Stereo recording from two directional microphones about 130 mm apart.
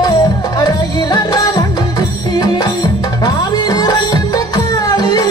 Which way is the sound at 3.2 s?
30° left (ahead or behind).